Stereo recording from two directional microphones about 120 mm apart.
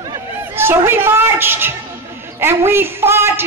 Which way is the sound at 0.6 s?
20° right (ahead or behind).